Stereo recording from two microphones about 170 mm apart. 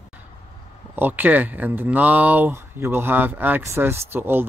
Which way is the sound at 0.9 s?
10° right (ahead or behind).